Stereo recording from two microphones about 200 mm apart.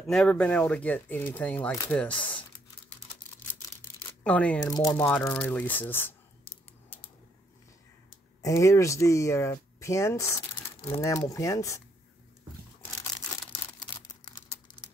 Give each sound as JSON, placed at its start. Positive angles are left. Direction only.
{"t": 0.0, "sound": "speech", "side_deg": 5}
{"t": 4.2, "sound": "speech", "side_deg": 5}
{"t": 4.6, "sound": "speech", "side_deg": 15}
{"t": 8.4, "sound": "speech", "side_deg": 15}
{"t": 13.0, "sound": "a sound", "side_deg": 20}